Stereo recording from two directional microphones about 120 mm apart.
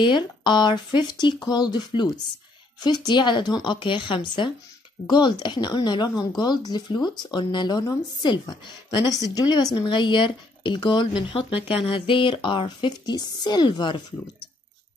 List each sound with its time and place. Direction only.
0.0 s speech: 40° left (ahead or behind)